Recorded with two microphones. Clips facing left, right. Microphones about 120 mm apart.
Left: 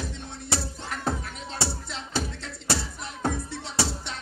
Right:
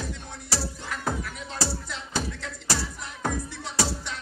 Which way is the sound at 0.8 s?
30° left (ahead or behind).